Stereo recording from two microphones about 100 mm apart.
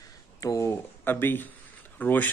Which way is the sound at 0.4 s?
35° left (ahead or behind).